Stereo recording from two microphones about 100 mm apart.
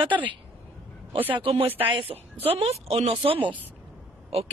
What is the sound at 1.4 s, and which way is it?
Speech, 70° right (ahead or behind).